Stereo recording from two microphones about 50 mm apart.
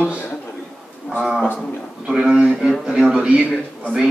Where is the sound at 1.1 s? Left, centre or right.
Left.